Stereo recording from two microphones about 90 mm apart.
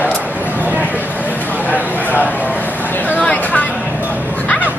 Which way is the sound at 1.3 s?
20° left (ahead or behind).